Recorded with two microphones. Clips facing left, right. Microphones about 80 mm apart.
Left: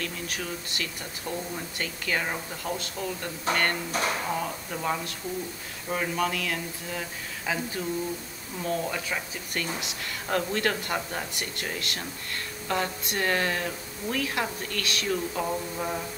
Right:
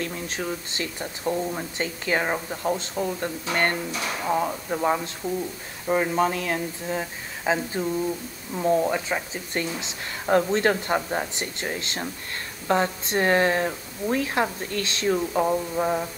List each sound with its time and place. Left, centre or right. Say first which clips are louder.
0.0 s speech: right 4 dB; right
3.5 s speech: left 1 dB; left
4.3 s speech: right 6 dB; right